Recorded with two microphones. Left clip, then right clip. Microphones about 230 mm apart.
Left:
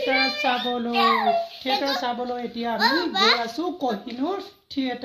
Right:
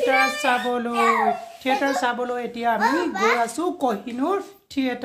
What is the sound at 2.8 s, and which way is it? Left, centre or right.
Speech, left.